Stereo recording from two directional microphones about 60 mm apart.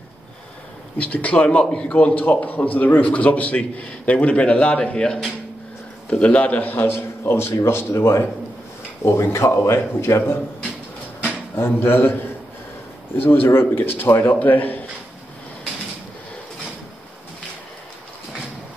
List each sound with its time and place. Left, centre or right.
0.9 s a man's voice: left
11.5 s a man's voice: left
13.2 s a man's voice: left